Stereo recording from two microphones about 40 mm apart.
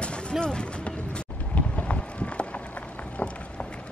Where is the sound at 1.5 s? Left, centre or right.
Left.